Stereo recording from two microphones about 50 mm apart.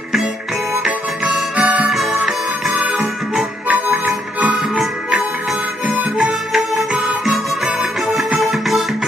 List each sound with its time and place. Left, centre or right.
1.6 s harmonica: right
3.6 s music: right
5.9 s harmonica: right
6.5 s music: centre